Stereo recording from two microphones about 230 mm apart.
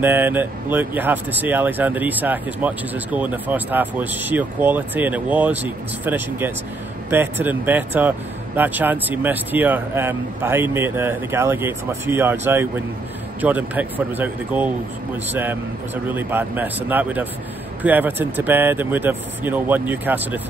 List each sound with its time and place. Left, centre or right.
0.0 s speech: centre